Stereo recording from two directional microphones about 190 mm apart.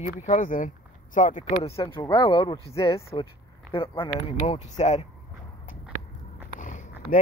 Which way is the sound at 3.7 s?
30° left (ahead or behind).